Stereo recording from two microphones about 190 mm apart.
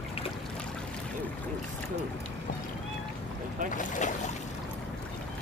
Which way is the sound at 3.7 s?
45° left (ahead or behind).